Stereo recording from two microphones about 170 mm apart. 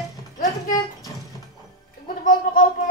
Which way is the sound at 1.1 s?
20° left (ahead or behind).